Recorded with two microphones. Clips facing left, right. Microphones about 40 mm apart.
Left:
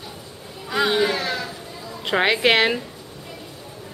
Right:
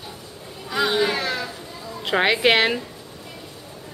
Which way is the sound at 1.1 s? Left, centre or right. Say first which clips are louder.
Even; centre.